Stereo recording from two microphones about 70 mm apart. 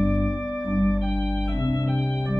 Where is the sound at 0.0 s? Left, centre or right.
Centre.